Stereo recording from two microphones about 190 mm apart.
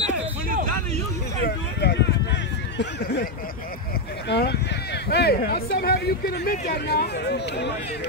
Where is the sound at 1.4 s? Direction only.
60° left (ahead or behind).